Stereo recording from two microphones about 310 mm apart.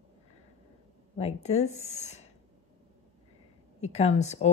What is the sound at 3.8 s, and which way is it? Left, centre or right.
Speech, left.